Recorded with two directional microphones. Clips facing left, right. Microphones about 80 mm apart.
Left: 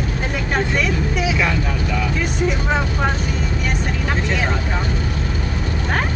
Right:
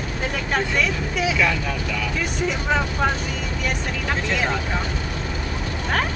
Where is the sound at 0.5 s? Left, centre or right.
Centre.